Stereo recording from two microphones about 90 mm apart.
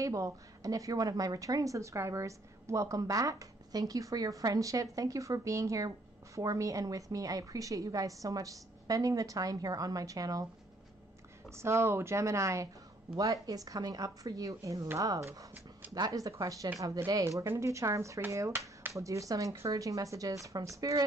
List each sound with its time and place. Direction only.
0.0 s a woman's voice: 40° right (ahead or behind)
11.5 s a woman's voice: 30° right (ahead or behind)